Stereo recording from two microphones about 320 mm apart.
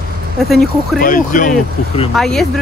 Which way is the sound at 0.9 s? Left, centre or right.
Left.